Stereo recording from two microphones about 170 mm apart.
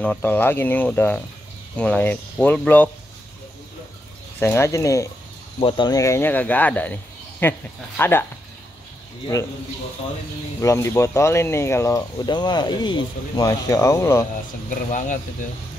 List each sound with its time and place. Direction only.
0.0 s speech: 10° left (ahead or behind)
4.4 s speech: 15° left (ahead or behind)
5.6 s speech: 30° left (ahead or behind); by 8.3 s 10° left (ahead or behind)
10.6 s speech: 15° left (ahead or behind)
14.7 s speech: 50° left (ahead or behind)